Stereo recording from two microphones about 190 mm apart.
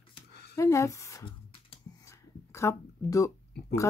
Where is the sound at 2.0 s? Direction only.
15° left (ahead or behind).